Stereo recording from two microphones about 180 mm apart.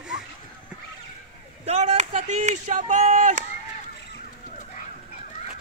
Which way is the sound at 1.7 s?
40° right (ahead or behind).